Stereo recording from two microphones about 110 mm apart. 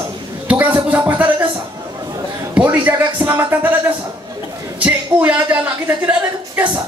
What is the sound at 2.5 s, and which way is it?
Music, 15° right (ahead or behind).